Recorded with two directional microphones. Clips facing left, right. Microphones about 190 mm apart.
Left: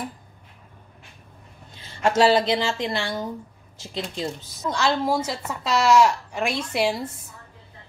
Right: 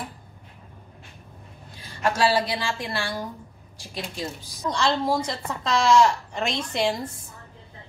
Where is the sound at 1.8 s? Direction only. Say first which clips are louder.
Left 4 dB; 25° left (ahead or behind).